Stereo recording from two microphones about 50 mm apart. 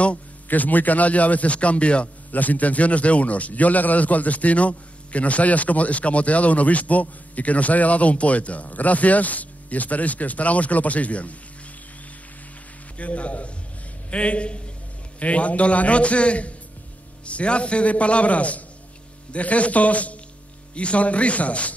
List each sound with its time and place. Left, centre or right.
0.5 s a man's voice: left
12.9 s a man's voice: left